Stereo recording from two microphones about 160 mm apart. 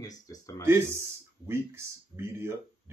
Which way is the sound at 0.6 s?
15° right (ahead or behind).